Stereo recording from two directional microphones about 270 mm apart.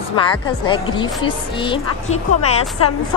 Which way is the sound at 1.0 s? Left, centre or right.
Centre.